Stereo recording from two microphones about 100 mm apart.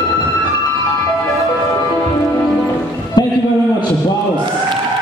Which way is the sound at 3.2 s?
45° left (ahead or behind).